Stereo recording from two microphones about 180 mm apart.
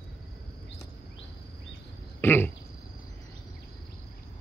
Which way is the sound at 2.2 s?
10° left (ahead or behind).